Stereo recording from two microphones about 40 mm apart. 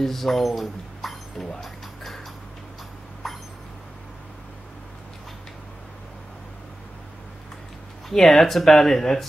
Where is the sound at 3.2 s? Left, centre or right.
Centre.